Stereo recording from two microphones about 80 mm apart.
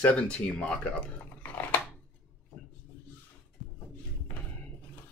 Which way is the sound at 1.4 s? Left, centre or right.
Left.